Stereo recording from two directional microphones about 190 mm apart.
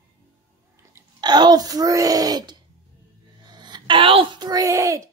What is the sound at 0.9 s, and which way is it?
Speech, 20° right (ahead or behind).